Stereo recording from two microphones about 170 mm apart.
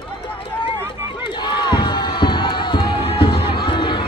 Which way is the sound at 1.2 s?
25° left (ahead or behind).